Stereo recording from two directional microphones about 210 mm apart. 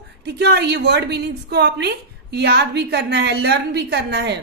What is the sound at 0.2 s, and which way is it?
A woman's voice, 50° right (ahead or behind).